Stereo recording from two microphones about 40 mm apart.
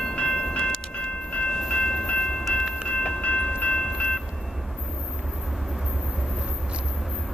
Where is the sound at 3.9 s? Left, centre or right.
Left.